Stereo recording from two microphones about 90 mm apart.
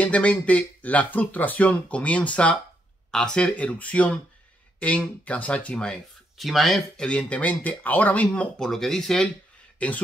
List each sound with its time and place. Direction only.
0.0 s speech: 15° left (ahead or behind)
6.3 s speech: centre (ahead or behind)
7.1 s speech: 15° left (ahead or behind)